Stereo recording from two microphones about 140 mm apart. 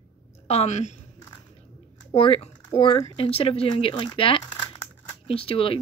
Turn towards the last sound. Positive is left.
turn(degrees=40)  # may be behind; listen again after turning